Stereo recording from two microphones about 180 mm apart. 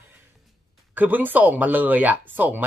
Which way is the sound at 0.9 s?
10° right (ahead or behind).